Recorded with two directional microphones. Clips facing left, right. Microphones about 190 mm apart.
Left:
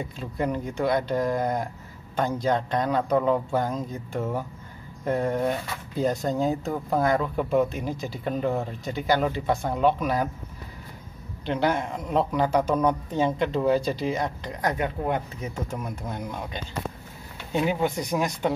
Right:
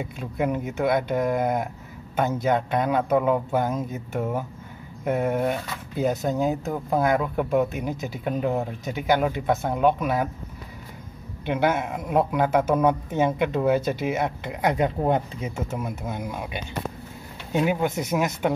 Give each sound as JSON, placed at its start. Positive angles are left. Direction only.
{"t": 0.0, "sound": "speech", "side_deg": -5}
{"t": 11.5, "sound": "speech", "side_deg": -5}
{"t": 15.0, "sound": "speech", "side_deg": -25}
{"t": 15.8, "sound": "speech", "side_deg": -10}